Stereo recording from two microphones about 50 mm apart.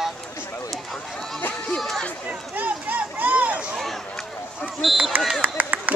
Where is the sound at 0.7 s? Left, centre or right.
Centre.